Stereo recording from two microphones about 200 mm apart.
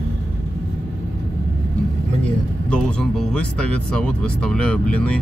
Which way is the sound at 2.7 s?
5° left (ahead or behind).